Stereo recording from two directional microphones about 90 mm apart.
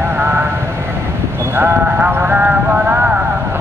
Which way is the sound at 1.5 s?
25° right (ahead or behind).